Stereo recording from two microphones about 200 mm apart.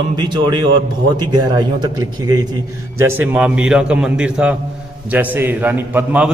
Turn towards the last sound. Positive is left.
turn(degrees=-10)  # may be behind; listen again after turning